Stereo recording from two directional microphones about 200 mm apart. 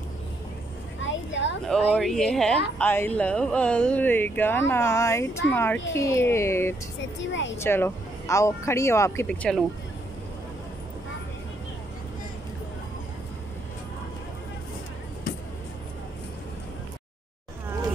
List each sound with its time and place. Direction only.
1.0 s a sound: 65° left (ahead or behind)
1.7 s speech: centre (ahead or behind)
7.2 s speech: 65° left (ahead or behind)
7.5 s speech: 10° left (ahead or behind)